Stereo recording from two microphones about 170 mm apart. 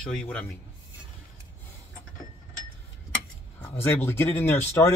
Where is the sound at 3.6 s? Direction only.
10° left (ahead or behind).